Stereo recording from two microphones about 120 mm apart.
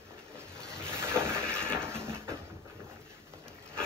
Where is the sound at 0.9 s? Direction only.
20° right (ahead or behind).